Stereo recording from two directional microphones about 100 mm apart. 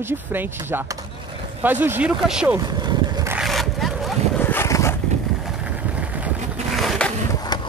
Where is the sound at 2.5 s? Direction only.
45° right (ahead or behind).